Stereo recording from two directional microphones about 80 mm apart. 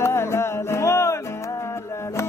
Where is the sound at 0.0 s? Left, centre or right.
Left.